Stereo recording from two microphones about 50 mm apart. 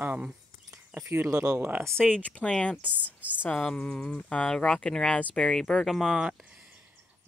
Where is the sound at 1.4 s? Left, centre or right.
Right.